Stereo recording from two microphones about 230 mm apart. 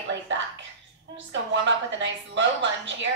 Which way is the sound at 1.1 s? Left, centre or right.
Right.